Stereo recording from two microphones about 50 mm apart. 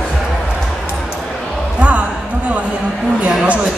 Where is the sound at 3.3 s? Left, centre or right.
Centre.